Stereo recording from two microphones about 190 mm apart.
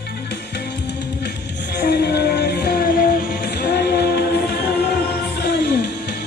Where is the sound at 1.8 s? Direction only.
60° left (ahead or behind).